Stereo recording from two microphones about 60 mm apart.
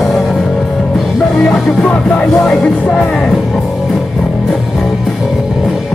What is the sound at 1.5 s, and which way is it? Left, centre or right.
Music, centre.